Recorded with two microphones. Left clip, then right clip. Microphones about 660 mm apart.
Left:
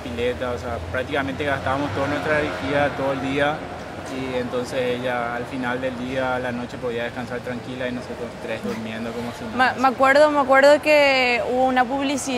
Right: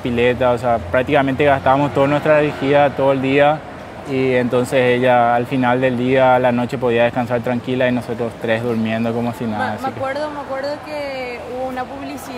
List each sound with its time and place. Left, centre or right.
0.2 s speech: right
9.6 s speech: left